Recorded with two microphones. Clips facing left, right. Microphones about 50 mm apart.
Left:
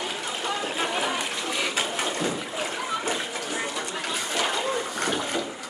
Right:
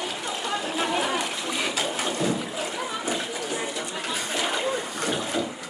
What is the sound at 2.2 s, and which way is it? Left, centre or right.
Water, centre.